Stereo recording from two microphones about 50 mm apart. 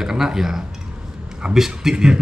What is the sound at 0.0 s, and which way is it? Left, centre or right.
Speech, centre.